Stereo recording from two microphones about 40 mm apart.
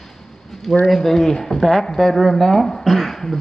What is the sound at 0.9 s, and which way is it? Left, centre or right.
A woman's voice, centre.